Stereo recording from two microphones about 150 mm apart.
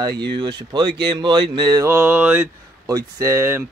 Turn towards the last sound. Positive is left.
turn(degrees=-15)  # may be behind; listen again after turning